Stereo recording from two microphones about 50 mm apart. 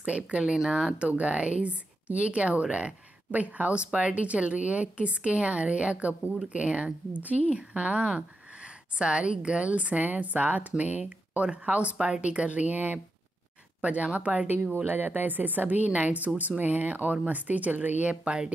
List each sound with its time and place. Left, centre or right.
0.0 s speech: right
14.9 s speech: right